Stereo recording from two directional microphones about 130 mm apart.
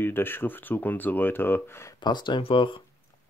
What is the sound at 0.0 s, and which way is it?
Speech, 15° left (ahead or behind).